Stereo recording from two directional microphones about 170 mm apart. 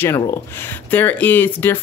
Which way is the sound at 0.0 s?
15° left (ahead or behind).